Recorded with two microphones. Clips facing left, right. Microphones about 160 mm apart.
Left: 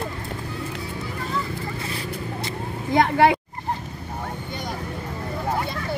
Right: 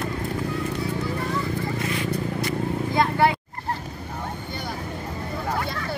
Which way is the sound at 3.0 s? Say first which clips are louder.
Left 4 dB; 90° left.